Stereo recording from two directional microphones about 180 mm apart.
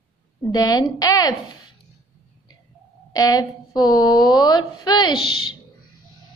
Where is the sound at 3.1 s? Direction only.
20° left (ahead or behind).